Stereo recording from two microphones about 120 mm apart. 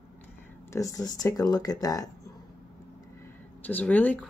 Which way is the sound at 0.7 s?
30° left (ahead or behind).